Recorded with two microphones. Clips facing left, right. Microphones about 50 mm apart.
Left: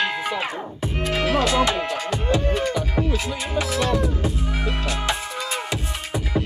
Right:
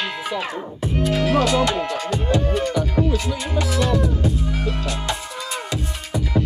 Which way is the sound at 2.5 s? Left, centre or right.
Centre.